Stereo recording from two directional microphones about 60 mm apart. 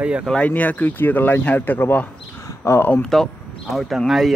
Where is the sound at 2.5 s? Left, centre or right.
Left.